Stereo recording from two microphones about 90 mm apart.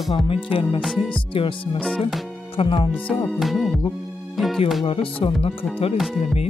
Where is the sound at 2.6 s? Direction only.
80° left.